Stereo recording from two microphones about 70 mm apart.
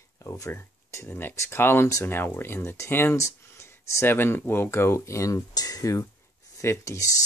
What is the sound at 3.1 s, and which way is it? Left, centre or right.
Speech, left.